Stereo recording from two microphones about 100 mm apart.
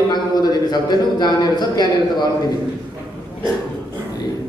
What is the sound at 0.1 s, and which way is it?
A man's voice, 45° left (ahead or behind).